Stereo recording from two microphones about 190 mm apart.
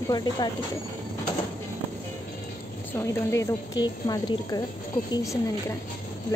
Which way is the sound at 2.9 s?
15° left (ahead or behind).